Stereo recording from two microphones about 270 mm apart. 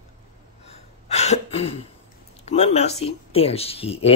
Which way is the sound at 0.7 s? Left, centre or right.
Left.